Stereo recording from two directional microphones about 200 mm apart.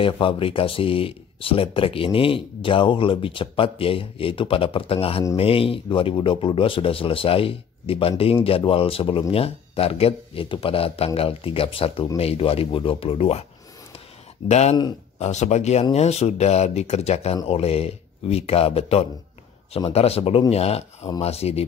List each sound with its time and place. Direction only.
0.0 s speech: 25° left (ahead or behind)
14.5 s speech: 35° left (ahead or behind)